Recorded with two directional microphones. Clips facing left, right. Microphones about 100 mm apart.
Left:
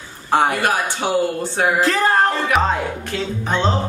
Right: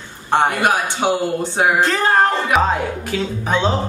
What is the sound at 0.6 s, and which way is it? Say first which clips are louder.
A man's voice: right 2 dB; 20° right (ahead or behind).